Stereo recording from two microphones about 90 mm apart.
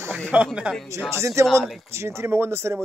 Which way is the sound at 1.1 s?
30° right (ahead or behind).